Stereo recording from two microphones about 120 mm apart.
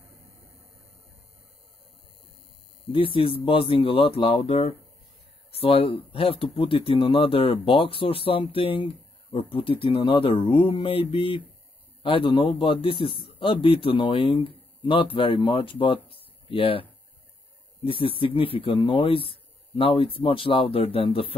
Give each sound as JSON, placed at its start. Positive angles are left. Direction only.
{"t": 2.9, "sound": "speech", "side_deg": 45}
{"t": 17.8, "sound": "speech", "side_deg": 45}